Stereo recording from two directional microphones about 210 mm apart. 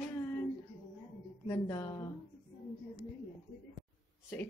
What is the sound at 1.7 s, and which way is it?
Speech, 20° left (ahead or behind).